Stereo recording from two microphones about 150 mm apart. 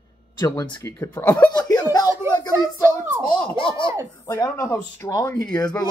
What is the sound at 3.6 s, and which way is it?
Speech, 35° left (ahead or behind).